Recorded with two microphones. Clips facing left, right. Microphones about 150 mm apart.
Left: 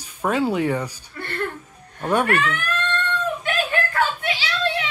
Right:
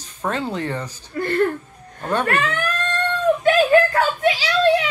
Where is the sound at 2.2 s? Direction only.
35° right (ahead or behind).